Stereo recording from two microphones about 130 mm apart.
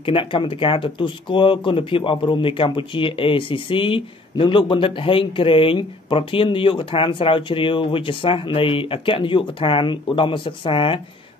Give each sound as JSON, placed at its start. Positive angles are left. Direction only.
{"t": 0.0, "sound": "speech", "side_deg": 40}